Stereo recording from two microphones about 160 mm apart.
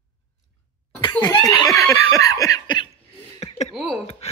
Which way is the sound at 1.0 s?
25° left (ahead or behind).